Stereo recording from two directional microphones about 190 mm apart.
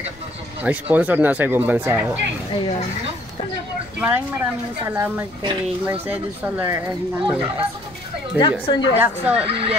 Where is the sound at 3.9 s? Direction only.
10° right (ahead or behind).